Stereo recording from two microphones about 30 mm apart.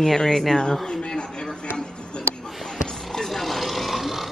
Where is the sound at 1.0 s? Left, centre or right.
Left.